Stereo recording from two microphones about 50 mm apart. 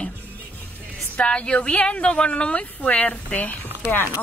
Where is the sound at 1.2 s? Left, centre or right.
Left.